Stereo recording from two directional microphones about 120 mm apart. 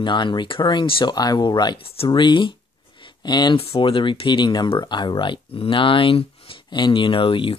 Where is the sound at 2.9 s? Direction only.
40° left (ahead or behind).